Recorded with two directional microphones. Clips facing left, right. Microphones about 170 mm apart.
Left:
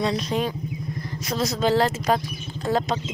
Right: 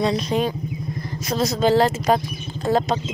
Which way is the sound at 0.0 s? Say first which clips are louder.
Right 3 dB; 25° right (ahead or behind).